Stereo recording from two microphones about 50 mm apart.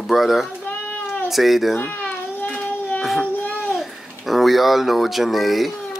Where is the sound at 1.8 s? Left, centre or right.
Left.